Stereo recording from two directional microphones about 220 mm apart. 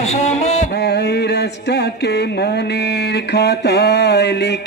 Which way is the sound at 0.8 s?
50° left (ahead or behind).